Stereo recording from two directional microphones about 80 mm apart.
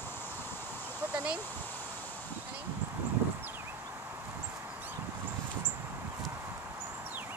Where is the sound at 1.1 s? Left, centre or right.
Centre.